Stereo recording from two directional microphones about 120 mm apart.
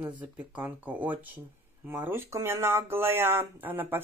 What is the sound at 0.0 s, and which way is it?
A woman's voice, 10° right (ahead or behind).